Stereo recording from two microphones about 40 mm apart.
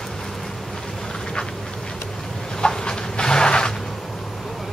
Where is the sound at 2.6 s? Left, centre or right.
Centre.